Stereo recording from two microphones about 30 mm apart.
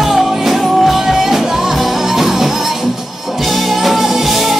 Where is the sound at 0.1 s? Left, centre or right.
Centre.